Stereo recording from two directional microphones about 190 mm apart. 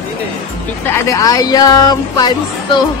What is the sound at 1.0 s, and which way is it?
Speech, 20° left (ahead or behind).